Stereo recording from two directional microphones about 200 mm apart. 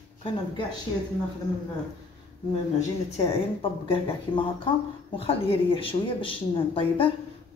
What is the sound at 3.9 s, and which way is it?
Speech, 25° left (ahead or behind).